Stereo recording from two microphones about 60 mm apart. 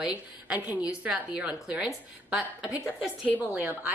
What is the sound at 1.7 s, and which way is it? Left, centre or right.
Speech, centre.